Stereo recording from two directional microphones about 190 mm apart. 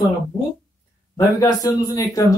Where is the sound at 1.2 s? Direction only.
20° left (ahead or behind).